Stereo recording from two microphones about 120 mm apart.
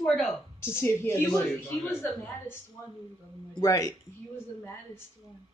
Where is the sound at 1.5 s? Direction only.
Centre (ahead or behind).